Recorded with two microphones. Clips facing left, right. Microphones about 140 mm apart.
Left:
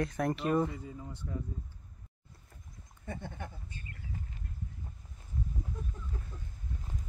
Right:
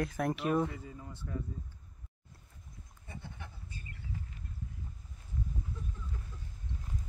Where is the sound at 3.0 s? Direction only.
50° left (ahead or behind).